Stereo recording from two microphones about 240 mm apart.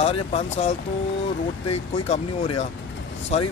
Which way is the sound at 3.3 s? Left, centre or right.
Left.